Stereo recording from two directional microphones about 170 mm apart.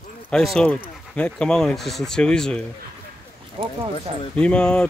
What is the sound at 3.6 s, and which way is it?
Speech, 35° right (ahead or behind).